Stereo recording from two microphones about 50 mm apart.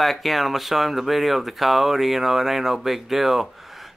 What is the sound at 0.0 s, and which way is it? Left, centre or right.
A man's voice, centre.